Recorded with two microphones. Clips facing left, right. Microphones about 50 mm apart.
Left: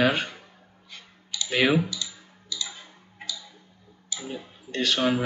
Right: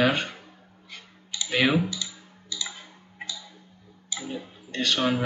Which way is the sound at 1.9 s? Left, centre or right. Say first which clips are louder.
Even; right.